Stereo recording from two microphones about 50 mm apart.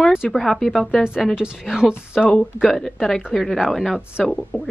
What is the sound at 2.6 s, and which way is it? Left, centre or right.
Speech, centre.